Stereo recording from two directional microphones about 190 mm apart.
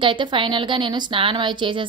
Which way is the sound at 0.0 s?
25° right (ahead or behind).